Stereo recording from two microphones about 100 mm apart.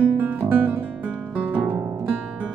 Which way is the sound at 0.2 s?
20° right (ahead or behind).